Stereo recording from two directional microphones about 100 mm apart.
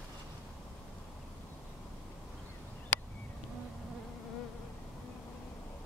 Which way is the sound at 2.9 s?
20° left (ahead or behind).